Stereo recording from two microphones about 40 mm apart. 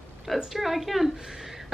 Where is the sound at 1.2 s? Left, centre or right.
Centre.